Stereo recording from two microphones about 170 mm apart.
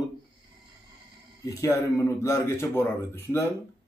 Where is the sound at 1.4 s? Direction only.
20° left (ahead or behind).